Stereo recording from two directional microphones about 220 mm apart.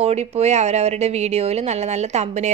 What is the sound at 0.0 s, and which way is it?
Speech, 30° right (ahead or behind).